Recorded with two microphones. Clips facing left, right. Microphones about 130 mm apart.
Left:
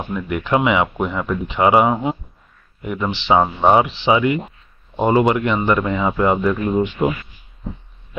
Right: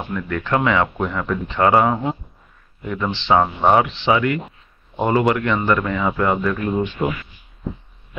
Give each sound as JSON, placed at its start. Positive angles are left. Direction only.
{"t": 0.1, "sound": "speech", "side_deg": 15}